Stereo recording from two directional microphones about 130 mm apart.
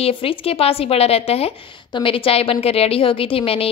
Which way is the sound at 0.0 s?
45° left (ahead or behind).